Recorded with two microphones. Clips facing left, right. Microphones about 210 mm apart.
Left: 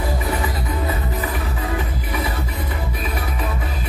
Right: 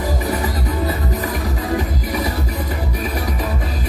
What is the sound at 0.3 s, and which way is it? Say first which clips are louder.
Music: right 3 dB; 40° right (ahead or behind).